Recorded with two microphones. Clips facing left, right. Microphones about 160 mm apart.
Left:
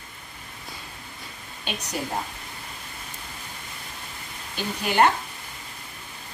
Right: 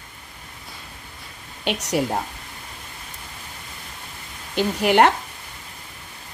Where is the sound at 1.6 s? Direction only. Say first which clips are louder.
Right 9 dB; 80° right.